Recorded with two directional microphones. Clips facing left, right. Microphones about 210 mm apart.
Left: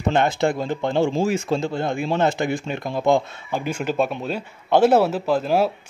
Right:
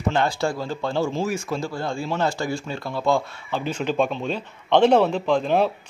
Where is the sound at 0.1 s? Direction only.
20° left (ahead or behind).